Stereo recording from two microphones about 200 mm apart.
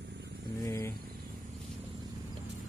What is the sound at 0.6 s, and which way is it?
Speech, 15° left (ahead or behind).